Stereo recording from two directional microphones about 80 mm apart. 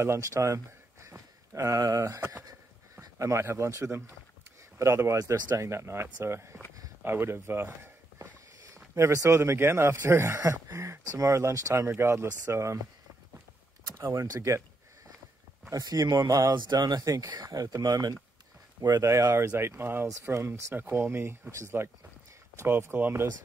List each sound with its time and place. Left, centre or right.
0.0 s speech: right
13.9 s speech: right
15.7 s speech: right
16.5 s speech: right
19.4 s speech: right